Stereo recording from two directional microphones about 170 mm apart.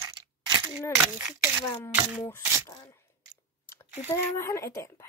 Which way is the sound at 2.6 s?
25° left (ahead or behind).